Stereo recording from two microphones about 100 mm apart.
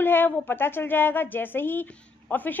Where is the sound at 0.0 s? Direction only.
20° left (ahead or behind).